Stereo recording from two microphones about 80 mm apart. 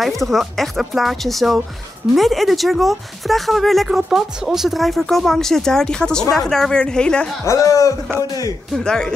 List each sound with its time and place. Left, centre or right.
0.0 s a woman's voice: centre
7.4 s a man's voice: left
8.7 s a woman's voice: centre